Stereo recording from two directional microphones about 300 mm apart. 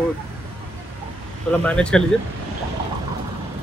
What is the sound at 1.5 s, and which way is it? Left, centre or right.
Speech, centre.